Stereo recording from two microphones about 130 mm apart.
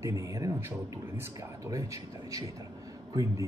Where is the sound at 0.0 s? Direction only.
25° right (ahead or behind).